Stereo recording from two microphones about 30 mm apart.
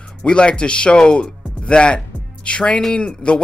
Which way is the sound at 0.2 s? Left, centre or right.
Left.